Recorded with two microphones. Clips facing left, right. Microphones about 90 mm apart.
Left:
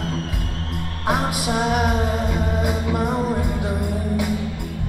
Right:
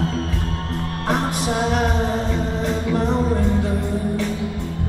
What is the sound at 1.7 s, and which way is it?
Music, 10° left (ahead or behind).